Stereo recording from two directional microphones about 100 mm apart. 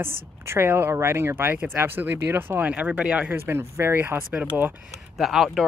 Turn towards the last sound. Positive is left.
turn(degrees=-5)  # may be behind; listen again after turning